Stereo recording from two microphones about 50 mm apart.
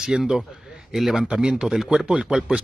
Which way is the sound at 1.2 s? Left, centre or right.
Centre.